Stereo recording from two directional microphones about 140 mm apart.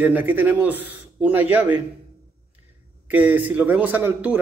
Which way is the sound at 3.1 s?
10° right (ahead or behind).